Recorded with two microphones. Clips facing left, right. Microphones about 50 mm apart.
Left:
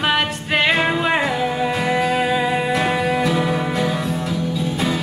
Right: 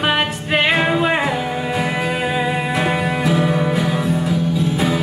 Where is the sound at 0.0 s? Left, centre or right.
Centre.